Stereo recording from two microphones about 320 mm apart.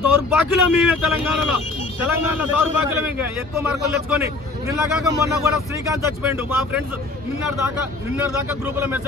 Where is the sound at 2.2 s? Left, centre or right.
Centre.